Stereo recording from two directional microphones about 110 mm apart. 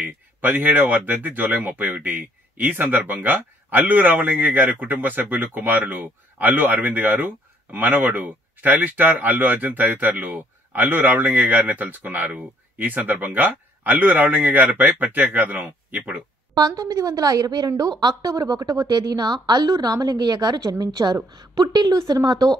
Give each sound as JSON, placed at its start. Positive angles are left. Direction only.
{"t": 0.0, "sound": "speech", "side_deg": -15}
{"t": 16.5, "sound": "a woman's voice", "side_deg": -35}